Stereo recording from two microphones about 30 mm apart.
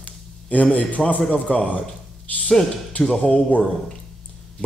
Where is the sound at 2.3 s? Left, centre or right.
Left.